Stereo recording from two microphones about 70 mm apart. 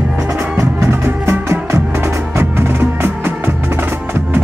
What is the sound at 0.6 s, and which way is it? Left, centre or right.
Music, right.